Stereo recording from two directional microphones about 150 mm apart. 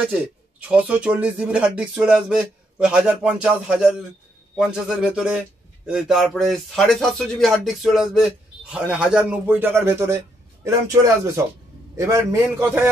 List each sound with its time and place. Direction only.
0.0 s a man's voice: 10° right (ahead or behind)